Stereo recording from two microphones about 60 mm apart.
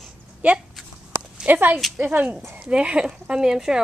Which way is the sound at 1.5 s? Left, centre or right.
Right.